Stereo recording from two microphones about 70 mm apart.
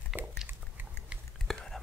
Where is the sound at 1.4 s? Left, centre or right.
Centre.